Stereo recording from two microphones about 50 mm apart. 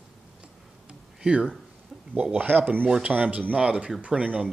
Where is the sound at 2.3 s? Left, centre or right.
Right.